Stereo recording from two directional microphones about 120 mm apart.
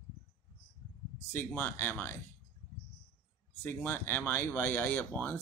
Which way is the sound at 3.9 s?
20° left (ahead or behind).